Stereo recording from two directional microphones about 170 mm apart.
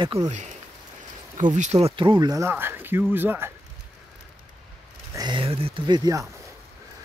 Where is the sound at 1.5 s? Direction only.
45° right (ahead or behind); by 3.5 s 15° right (ahead or behind).